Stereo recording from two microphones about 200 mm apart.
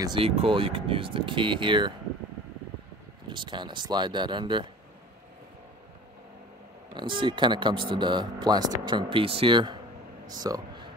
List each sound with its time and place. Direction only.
0.0 s speech: 25° right (ahead or behind)
3.3 s speech: 25° right (ahead or behind)
6.9 s speech: 25° right (ahead or behind)
10.2 s a sound: 20° right (ahead or behind)